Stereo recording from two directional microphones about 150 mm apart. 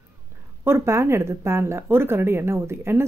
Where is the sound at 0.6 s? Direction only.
15° right (ahead or behind).